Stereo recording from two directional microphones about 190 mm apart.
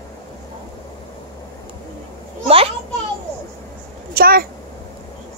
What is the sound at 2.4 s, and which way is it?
Children playing, 30° right (ahead or behind).